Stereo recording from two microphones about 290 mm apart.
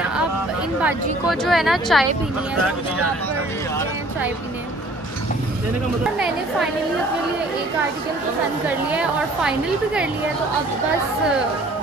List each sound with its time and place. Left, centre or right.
1.4 s a woman's voice: centre
6.1 s a woman's voice: centre
8.6 s a woman's voice: centre